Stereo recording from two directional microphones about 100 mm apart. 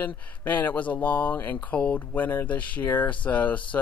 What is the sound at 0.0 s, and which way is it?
Speech, 15° left (ahead or behind).